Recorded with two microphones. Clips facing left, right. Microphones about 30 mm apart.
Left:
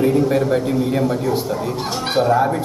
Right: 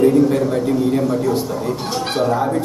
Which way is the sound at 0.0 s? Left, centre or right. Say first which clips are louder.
Right 3 dB; centre.